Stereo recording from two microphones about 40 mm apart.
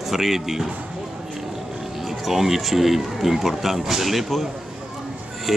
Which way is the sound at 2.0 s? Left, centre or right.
Centre.